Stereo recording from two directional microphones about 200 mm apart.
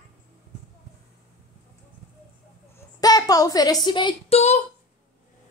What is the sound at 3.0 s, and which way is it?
A woman's voice, 20° left (ahead or behind).